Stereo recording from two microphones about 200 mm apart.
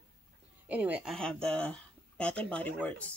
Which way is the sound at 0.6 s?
5° right (ahead or behind).